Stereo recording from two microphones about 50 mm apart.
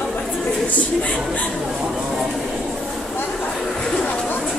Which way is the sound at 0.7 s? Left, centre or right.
Left.